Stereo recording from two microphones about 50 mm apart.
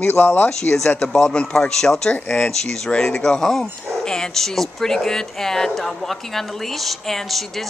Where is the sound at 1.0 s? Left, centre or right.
Centre.